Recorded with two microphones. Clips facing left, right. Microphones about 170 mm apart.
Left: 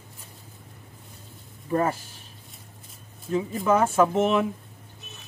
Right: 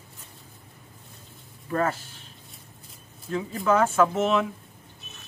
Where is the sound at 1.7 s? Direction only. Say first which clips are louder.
Left 2 dB; 20° left (ahead or behind).